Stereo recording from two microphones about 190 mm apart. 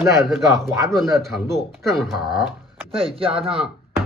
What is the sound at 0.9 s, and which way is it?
Speech, centre (ahead or behind).